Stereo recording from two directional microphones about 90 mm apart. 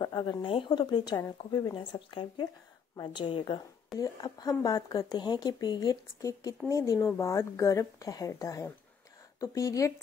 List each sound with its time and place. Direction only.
0.0 s speech: 50° left (ahead or behind); by 0.7 s 65° left (ahead or behind)
0.7 s speech: 55° left (ahead or behind)
4.0 s a woman's voice: 45° left (ahead or behind)